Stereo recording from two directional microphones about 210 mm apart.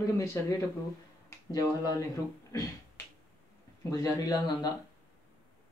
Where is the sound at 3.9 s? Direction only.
15° left (ahead or behind).